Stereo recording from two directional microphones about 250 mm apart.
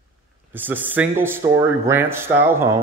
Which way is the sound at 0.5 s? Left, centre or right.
Centre.